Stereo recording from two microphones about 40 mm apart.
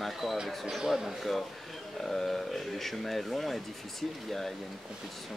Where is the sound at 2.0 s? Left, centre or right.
Centre.